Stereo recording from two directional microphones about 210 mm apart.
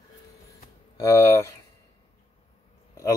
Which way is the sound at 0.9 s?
15° left (ahead or behind).